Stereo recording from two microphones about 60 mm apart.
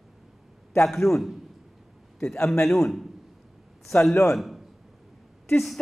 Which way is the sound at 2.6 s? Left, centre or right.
Centre.